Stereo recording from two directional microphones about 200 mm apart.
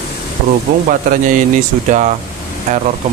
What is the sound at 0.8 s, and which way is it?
A man's voice, 40° right (ahead or behind).